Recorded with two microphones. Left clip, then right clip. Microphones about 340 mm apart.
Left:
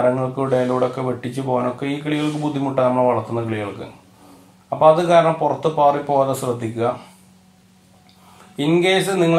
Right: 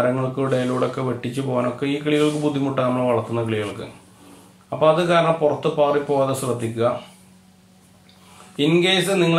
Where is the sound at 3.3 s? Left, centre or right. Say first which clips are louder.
Even; centre.